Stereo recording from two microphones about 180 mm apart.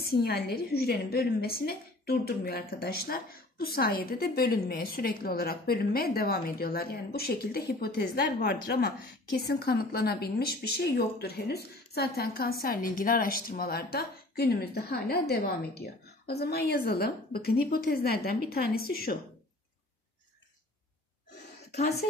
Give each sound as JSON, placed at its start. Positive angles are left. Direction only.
{"t": 0.0, "sound": "a woman's voice", "side_deg": 55}